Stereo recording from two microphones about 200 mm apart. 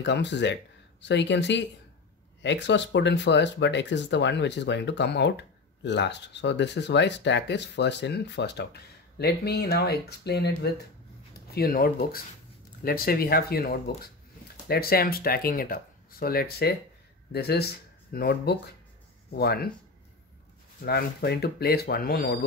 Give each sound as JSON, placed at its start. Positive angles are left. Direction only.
{"t": 0.0, "sound": "speech", "side_deg": 60}
{"t": 11.5, "sound": "speech", "side_deg": 50}
{"t": 20.8, "sound": "speech", "side_deg": 55}